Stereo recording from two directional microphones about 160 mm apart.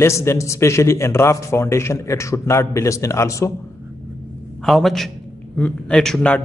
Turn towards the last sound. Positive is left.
turn(degrees=5)  # may be behind; listen again after turning